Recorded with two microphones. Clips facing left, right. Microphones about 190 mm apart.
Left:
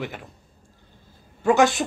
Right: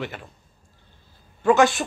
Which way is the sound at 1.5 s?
20° left (ahead or behind).